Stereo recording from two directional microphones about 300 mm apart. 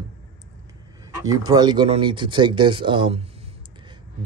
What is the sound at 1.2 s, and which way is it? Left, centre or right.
Speech, centre.